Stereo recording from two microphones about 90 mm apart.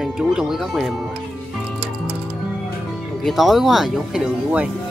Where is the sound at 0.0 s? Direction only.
5° right (ahead or behind).